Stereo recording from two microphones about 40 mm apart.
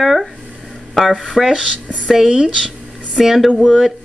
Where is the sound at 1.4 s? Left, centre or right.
Centre.